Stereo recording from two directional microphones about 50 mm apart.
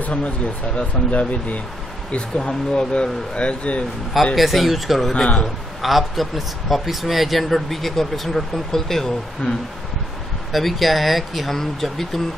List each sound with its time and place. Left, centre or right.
0.0 s speech: left
4.4 s speech: centre
5.1 s speech: centre
5.8 s speech: centre
10.5 s speech: centre